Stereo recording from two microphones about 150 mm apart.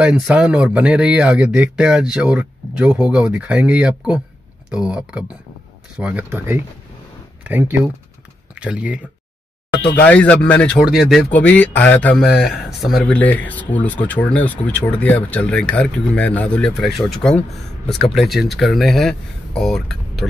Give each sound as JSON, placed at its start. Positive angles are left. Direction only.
{"t": 0.0, "sound": "speech", "side_deg": -5}
{"t": 10.0, "sound": "speech", "side_deg": 10}